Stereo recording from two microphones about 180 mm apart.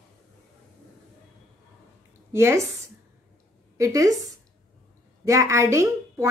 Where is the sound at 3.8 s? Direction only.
20° right (ahead or behind).